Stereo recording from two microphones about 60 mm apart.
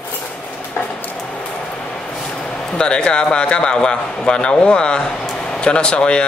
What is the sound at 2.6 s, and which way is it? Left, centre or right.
A man's voice, centre.